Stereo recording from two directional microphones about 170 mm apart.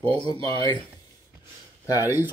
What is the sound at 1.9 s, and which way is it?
Speech, 15° right (ahead or behind).